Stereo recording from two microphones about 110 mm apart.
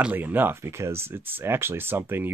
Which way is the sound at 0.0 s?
15° right (ahead or behind).